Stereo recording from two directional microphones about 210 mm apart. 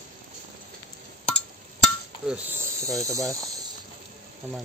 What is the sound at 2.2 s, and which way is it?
Speech, 10° right (ahead or behind).